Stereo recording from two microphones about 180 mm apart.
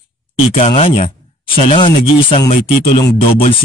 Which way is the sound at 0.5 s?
35° left (ahead or behind).